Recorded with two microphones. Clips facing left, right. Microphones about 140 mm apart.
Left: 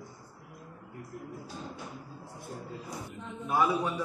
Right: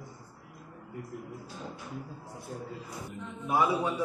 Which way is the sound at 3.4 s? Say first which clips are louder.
Right 1 dB; 15° right (ahead or behind).